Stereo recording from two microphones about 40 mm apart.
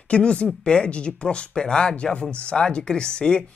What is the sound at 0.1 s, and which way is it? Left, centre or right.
Speech, left.